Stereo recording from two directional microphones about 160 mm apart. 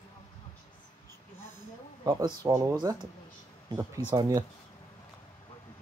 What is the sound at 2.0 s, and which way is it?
Speech, 25° right (ahead or behind).